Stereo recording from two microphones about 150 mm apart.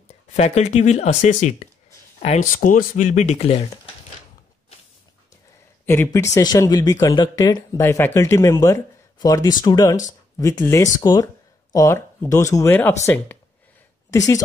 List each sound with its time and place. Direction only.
0.3 s speech: 50° left (ahead or behind)
5.9 s speech: 15° left (ahead or behind)